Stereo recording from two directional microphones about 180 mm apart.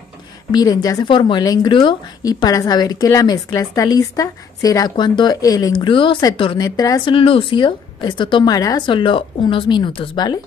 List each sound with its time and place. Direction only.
0.5 s a woman's voice: 20° left (ahead or behind)